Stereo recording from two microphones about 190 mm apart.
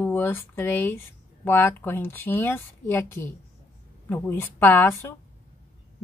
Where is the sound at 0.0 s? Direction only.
10° left (ahead or behind).